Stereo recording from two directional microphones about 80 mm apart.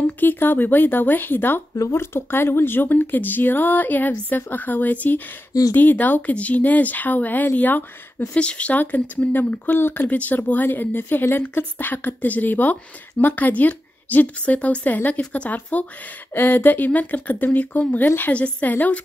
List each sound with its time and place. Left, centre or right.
0.0 s speech: left
5.5 s speech: left
5.8 s speech: left